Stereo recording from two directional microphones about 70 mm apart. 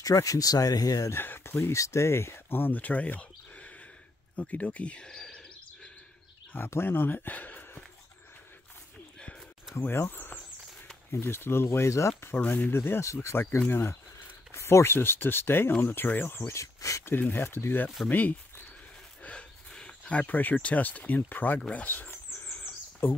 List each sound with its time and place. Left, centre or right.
0.0 s speech: left
1.1 s speech: left; by 5.4 s centre
6.5 s speech: left
9.8 s speech: left
12.4 s speech: left
12.7 s speech: left
17.0 s speech: left
19.7 s a sound: centre
20.5 s speech: left
22.6 s bird: left